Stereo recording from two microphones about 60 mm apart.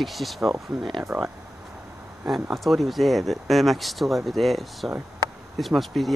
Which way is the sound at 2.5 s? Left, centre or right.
Centre.